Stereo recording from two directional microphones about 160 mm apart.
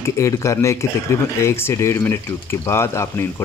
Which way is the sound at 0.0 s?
20° left (ahead or behind).